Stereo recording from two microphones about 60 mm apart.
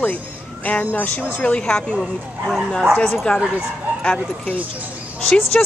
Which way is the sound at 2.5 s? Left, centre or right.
Centre.